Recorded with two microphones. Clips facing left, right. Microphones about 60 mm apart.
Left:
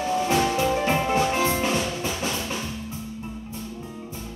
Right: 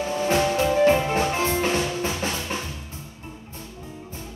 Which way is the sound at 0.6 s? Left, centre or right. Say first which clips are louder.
Right 4 dB; centre.